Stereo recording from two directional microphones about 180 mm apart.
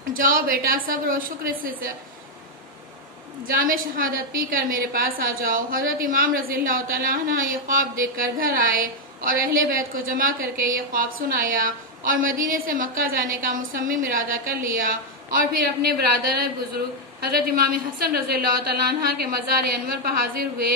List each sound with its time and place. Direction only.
0.1 s a woman's voice: 50° right (ahead or behind)
3.4 s a woman's voice: 50° right (ahead or behind)